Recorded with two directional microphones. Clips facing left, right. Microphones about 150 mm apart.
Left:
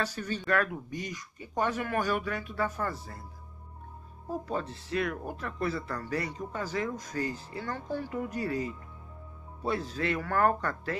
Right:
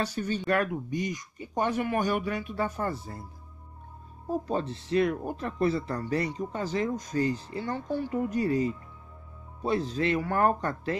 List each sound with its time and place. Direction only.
0.0 s speech: 20° right (ahead or behind)
4.5 s speech: 25° right (ahead or behind)